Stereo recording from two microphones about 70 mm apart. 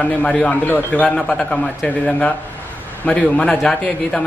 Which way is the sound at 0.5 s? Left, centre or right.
Left.